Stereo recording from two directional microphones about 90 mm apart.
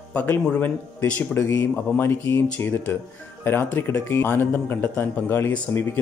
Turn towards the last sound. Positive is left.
turn(degrees=20)  # may be behind; listen again after turning